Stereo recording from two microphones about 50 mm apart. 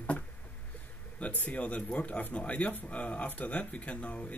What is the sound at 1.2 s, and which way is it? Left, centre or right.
Speech, left.